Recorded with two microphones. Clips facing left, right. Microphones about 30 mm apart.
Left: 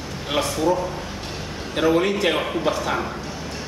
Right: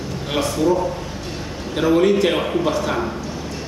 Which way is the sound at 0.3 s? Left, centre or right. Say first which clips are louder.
Right 2 dB; centre.